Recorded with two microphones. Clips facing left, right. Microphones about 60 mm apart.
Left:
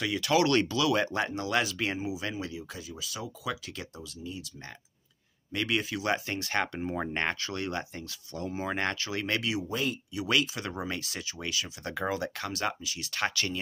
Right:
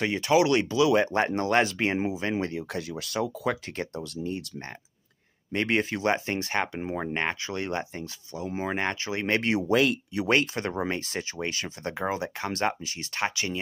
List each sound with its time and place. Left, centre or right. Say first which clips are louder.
0.0 s speech: right 3 dB; right
0.3 s speech: right 3 dB; centre; by 2.0 s right
2.3 s speech: right 8 dB; right
5.5 s speech: right 4 dB; right; by 7.5 s centre
7.5 s speech: right 3 dB; right
9.4 s speech: right 6 dB; right
9.7 s speech: right 9 dB; right
10.1 s speech: right 2 dB; right
11.9 s speech: right 2 dB; right
13.2 s speech: right 2 dB; right